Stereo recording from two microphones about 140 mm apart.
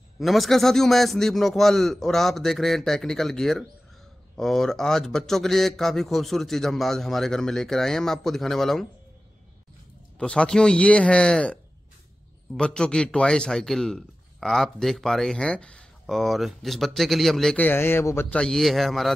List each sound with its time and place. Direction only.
0.2 s a man's voice: centre (ahead or behind)
10.1 s a man's voice: 5° left (ahead or behind)
12.5 s a man's voice: 5° left (ahead or behind)
17.6 s a man's voice: 15° left (ahead or behind)